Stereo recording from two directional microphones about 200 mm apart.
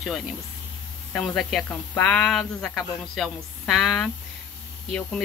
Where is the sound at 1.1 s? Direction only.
5° left (ahead or behind).